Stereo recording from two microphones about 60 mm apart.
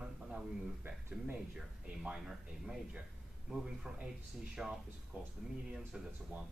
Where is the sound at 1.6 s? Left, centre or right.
Centre.